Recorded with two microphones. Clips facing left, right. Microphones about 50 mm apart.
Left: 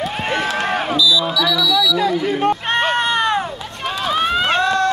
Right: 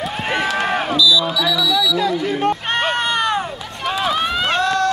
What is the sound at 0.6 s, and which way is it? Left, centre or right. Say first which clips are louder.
Run: even; centre.